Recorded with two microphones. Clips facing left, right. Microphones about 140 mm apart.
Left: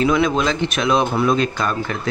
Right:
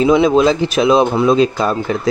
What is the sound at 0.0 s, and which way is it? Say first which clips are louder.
Speech: right 6 dB; 25° right (ahead or behind).